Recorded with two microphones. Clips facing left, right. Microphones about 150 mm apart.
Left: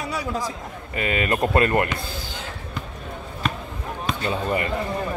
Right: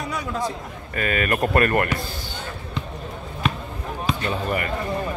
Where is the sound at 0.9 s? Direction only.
20° left (ahead or behind).